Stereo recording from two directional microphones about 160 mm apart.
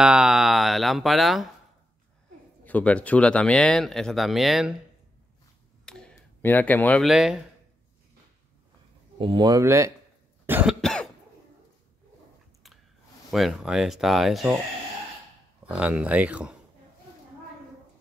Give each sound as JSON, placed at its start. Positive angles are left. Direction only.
{"t": 0.0, "sound": "a sound", "side_deg": -5}
{"t": 2.6, "sound": "speech", "side_deg": 10}
{"t": 5.9, "sound": "a sound", "side_deg": 5}
{"t": 7.1, "sound": "speech", "side_deg": -5}
{"t": 9.2, "sound": "speech", "side_deg": -30}
{"t": 10.4, "sound": "cough", "side_deg": -10}
{"t": 10.8, "sound": "cough", "side_deg": 5}
{"t": 13.3, "sound": "speech", "side_deg": -5}
{"t": 15.6, "sound": "speech", "side_deg": -10}